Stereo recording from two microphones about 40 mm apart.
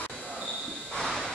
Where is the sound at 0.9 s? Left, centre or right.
Centre.